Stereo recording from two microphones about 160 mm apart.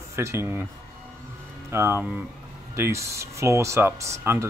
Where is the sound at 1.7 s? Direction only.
15° right (ahead or behind).